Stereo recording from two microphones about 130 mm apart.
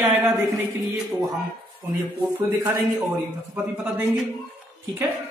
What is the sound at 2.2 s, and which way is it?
Speech, 15° right (ahead or behind).